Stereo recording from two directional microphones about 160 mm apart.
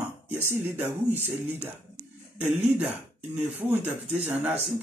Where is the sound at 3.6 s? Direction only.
10° right (ahead or behind).